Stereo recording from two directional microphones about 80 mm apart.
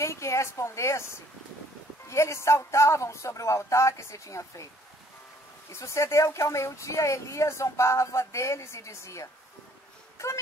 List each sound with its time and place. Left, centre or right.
0.0 s speech: left
5.7 s speech: left
10.1 s a sound: left